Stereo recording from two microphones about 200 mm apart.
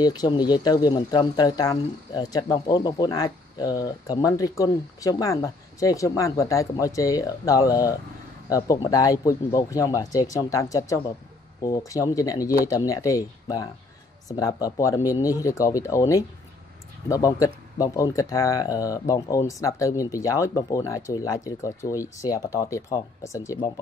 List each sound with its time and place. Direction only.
0.0 s speech: 20° left (ahead or behind)